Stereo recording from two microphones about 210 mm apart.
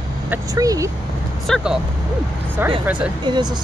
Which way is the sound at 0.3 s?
15° right (ahead or behind).